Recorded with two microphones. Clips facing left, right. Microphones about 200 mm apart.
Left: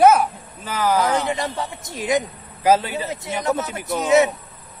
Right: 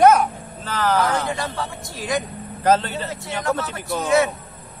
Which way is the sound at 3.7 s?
20° left (ahead or behind).